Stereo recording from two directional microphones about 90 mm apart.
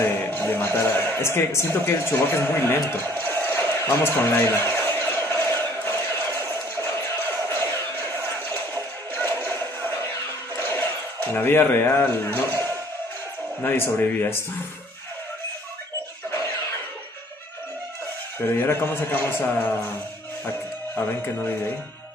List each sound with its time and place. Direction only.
0.0 s speech: 20° left (ahead or behind)
3.2 s music: 20° left (ahead or behind)
3.8 s a sound: 25° left (ahead or behind)
6.5 s music: 25° left (ahead or behind)
10.6 s a sound: 20° left (ahead or behind)
11.3 s speech: 25° left (ahead or behind)
18.6 s speech: 25° left (ahead or behind)